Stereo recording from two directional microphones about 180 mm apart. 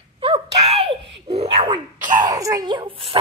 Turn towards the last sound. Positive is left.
turn(degrees=-30)  # may be behind; listen again after turning